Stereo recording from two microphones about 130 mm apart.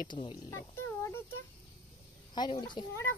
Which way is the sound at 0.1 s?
35° left (ahead or behind).